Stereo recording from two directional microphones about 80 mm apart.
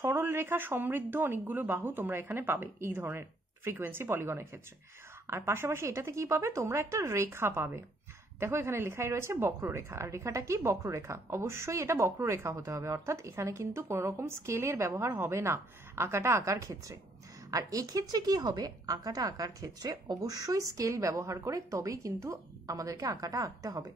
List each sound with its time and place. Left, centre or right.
0.0 s a woman's voice: right